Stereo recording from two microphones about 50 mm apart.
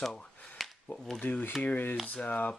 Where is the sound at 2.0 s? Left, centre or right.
Left.